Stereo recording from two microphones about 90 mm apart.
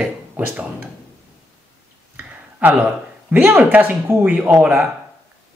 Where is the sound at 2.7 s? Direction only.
10° right (ahead or behind).